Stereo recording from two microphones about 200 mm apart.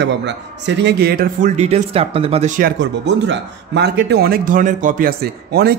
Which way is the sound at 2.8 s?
65° right (ahead or behind).